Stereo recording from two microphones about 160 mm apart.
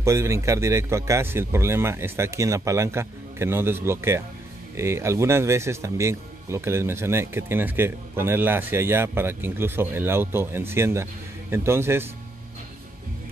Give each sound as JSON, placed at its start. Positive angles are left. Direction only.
{"t": 0.0, "sound": "speech", "side_deg": -20}